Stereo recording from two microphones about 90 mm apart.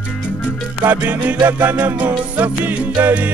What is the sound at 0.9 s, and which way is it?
Music, 15° right (ahead or behind).